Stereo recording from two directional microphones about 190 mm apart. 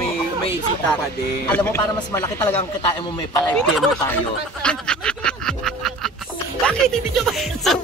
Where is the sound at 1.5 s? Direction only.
10° left (ahead or behind).